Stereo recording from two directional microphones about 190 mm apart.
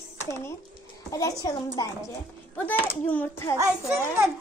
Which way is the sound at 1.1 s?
20° left (ahead or behind).